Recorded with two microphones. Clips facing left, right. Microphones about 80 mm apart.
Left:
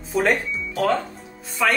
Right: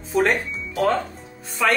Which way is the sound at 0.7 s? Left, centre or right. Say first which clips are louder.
Right 1 dB; centre.